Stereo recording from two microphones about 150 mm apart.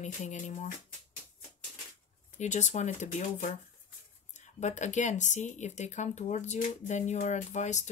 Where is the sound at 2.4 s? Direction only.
55° left (ahead or behind).